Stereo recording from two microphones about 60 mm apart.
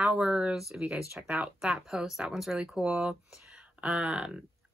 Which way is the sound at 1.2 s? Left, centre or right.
Centre.